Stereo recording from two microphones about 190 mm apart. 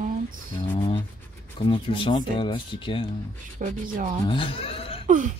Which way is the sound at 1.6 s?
30° left (ahead or behind).